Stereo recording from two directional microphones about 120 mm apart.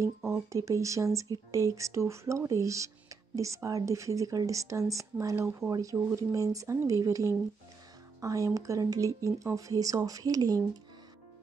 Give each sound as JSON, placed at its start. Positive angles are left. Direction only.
{"t": 0.0, "sound": "speech", "side_deg": -25}